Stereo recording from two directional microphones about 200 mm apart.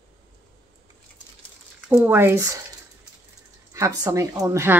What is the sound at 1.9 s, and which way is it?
Speech, 10° right (ahead or behind).